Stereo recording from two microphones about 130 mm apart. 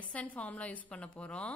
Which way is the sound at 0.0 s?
10° left (ahead or behind).